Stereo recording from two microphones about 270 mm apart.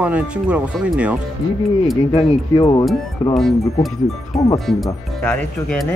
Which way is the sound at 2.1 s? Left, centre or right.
Centre.